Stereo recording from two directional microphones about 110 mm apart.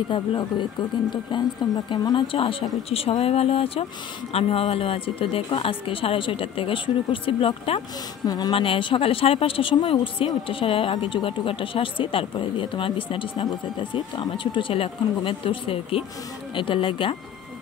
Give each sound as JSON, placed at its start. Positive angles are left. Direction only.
{"t": 0.1, "sound": "speech", "side_deg": 45}
{"t": 2.9, "sound": "a woman's voice", "side_deg": 65}
{"t": 8.3, "sound": "speech", "side_deg": 35}
{"t": 8.5, "sound": "a woman's voice", "side_deg": 50}
{"t": 13.5, "sound": "speech", "side_deg": 40}